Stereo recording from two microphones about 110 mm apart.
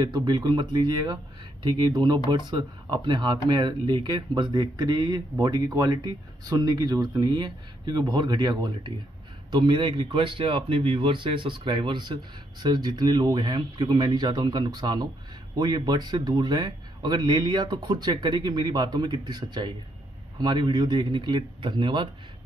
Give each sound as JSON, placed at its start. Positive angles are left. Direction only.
{"t": 0.0, "sound": "speech", "side_deg": -40}